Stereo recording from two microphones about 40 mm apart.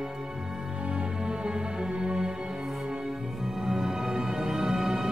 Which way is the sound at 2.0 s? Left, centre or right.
Right.